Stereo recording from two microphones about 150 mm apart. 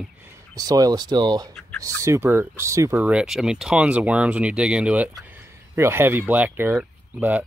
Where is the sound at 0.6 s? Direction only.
25° right (ahead or behind).